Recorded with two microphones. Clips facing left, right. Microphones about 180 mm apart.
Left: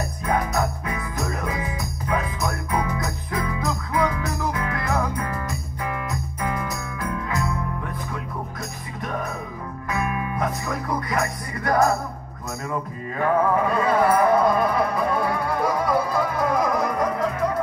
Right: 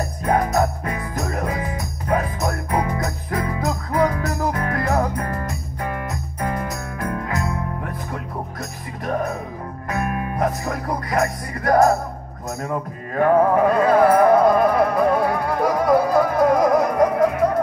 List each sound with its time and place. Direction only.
0.2 s music: 40° right (ahead or behind)